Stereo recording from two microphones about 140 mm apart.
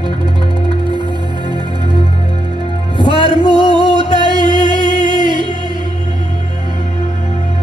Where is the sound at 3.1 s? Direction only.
35° right (ahead or behind).